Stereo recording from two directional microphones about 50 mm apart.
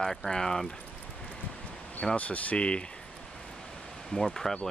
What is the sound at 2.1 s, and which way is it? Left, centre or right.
Speech, left.